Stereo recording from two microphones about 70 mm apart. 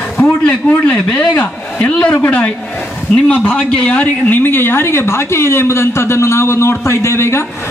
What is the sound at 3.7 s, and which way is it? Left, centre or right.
Speech, left.